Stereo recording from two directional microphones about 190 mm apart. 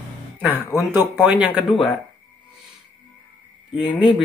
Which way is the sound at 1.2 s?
10° right (ahead or behind).